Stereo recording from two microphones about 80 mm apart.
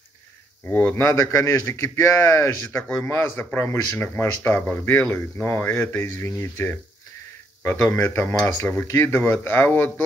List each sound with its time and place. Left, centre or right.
0.7 s speech: left
1.0 s a man's voice: left
4.0 s speech: left
8.0 s a man's voice: left